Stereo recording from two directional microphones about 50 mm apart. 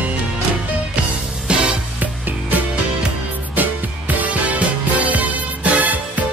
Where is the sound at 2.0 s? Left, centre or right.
Right.